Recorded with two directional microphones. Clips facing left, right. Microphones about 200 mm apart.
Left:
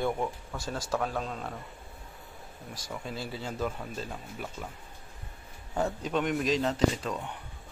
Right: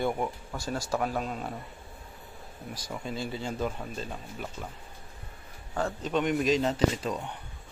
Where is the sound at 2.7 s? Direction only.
Centre (ahead or behind).